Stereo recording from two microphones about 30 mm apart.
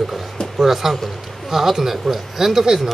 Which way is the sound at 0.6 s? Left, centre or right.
Centre.